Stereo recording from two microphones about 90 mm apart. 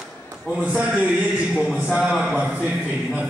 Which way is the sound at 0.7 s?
15° right (ahead or behind).